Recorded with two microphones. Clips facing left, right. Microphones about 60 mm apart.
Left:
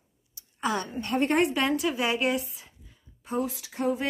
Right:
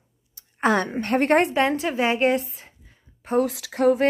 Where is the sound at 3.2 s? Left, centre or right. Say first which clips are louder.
Right 8 dB; right.